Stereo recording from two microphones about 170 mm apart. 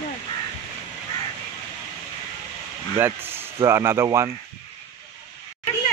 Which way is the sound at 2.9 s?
15° right (ahead or behind).